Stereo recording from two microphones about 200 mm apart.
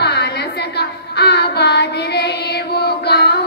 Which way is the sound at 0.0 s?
55° left (ahead or behind).